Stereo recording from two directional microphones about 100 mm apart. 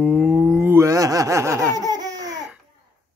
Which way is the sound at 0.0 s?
10° right (ahead or behind).